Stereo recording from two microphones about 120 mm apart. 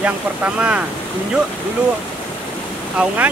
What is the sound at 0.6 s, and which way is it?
Speech, 10° right (ahead or behind).